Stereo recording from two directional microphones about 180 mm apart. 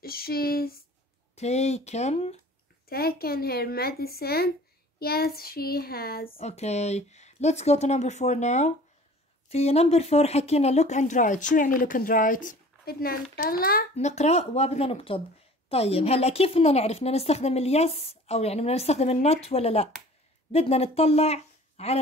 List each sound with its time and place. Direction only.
0.0 s speech: 55° left (ahead or behind)
1.3 s a woman's voice: 40° left (ahead or behind)
2.9 s speech: 60° left (ahead or behind)
6.3 s a woman's voice: 35° left (ahead or behind); by 13.8 s 55° left (ahead or behind)
13.9 s a woman's voice: 35° left (ahead or behind)